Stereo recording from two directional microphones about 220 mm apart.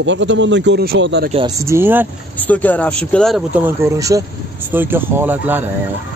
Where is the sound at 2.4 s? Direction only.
5° left (ahead or behind); by 5.6 s 10° right (ahead or behind).